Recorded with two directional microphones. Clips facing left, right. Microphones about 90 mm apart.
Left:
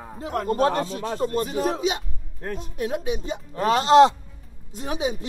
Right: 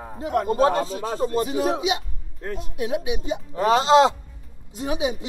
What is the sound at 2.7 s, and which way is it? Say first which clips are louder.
Speech: right 2 dB; 45° left (ahead or behind).